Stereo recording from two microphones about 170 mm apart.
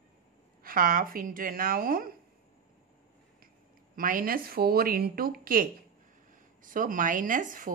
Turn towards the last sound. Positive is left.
turn(degrees=-50)  # may be behind; listen again after turning